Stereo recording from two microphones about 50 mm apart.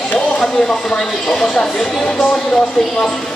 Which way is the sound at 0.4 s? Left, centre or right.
Centre.